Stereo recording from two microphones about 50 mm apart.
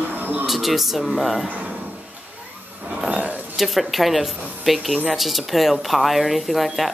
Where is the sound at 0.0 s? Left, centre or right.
Right.